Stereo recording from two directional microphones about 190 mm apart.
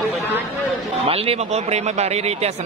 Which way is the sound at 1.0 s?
30° right (ahead or behind).